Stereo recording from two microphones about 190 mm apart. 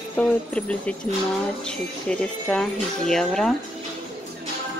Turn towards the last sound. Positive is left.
turn(degrees=0)  # may be behind; listen again after turning